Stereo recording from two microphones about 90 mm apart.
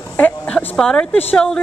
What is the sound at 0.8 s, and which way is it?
Speech, 5° left (ahead or behind).